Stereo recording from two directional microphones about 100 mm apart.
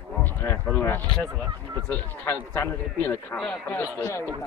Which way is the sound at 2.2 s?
25° left (ahead or behind).